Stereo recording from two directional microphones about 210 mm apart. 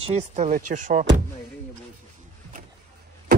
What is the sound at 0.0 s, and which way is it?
Speech, 30° right (ahead or behind).